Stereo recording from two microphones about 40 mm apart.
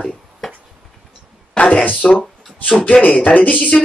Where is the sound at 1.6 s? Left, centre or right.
Left.